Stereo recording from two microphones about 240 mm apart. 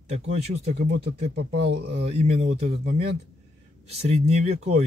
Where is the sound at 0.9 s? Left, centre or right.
Right.